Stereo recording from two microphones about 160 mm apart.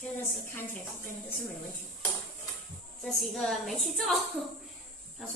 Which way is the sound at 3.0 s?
Centre (ahead or behind).